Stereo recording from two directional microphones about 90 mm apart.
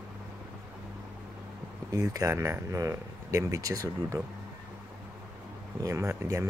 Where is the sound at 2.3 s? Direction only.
30° right (ahead or behind).